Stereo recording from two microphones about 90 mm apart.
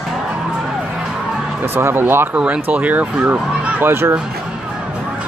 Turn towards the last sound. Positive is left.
turn(degrees=-25)  # may be behind; listen again after turning